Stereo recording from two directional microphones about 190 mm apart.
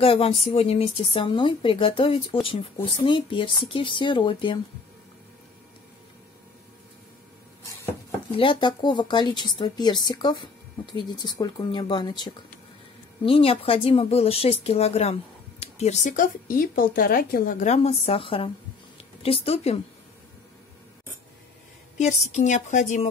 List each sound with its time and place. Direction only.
0.0 s speech: 30° left (ahead or behind)
8.3 s speech: 25° left (ahead or behind)
21.9 s speech: 35° left (ahead or behind)